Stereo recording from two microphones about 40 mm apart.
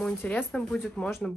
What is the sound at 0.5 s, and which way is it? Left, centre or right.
Speech, left.